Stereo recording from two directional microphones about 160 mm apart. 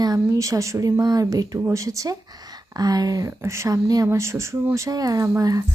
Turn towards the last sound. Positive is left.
turn(degrees=-20)  # may be behind; listen again after turning